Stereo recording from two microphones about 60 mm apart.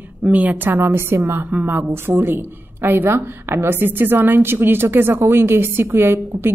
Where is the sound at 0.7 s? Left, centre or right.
Right.